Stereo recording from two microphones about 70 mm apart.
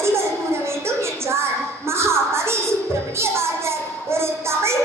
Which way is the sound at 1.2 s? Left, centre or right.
Right.